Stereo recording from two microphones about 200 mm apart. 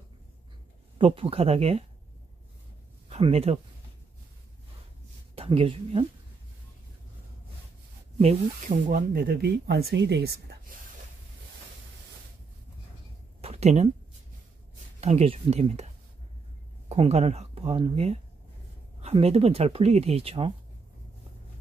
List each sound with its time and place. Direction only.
0.9 s speech: 25° right (ahead or behind)
3.1 s speech: 30° right (ahead or behind)
5.3 s speech: 30° right (ahead or behind)
8.2 s speech: 35° right (ahead or behind); by 10.8 s 55° right (ahead or behind)
13.4 s a sound: 30° right (ahead or behind)
15.0 s speech: 30° right (ahead or behind)
16.9 s speech: 30° right (ahead or behind)